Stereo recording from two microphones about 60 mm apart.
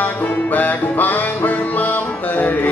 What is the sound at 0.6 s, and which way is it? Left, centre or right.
Music, left.